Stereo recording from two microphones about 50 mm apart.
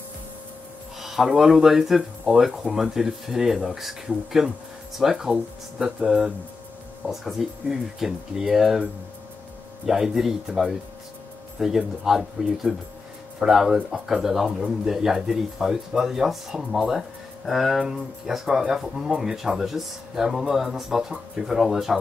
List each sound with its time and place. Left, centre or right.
1.0 s a sound: centre
1.4 s speech: centre
9.8 s speech: centre